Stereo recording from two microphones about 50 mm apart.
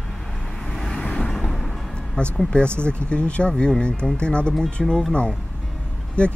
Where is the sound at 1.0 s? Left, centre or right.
Left.